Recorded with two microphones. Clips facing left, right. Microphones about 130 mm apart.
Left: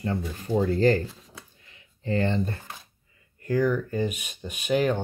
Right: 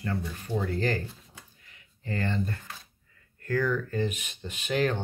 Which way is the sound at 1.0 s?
90° left.